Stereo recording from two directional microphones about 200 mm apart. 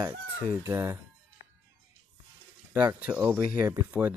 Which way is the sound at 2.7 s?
10° right (ahead or behind).